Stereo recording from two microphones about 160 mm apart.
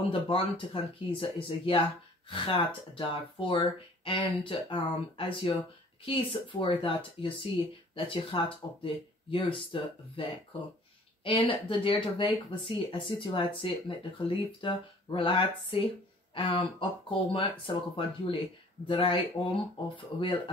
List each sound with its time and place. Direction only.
0.1 s speech: 35° left (ahead or behind)